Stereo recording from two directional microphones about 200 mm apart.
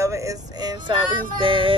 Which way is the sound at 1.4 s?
25° right (ahead or behind).